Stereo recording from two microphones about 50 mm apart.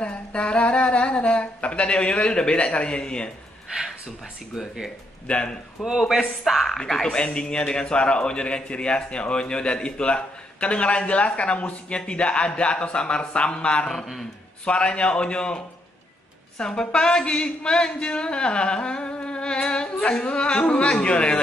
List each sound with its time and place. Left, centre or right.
0.0 s speech: left
3.7 s speech: right
4.6 s speech: centre
5.2 s speech: centre
5.9 s speech: centre
6.8 s speech: centre